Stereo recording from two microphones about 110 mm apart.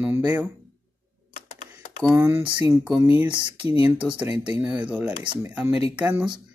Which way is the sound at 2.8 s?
10° right (ahead or behind).